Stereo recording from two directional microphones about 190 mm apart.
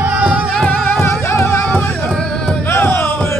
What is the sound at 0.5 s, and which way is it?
Music, 5° left (ahead or behind).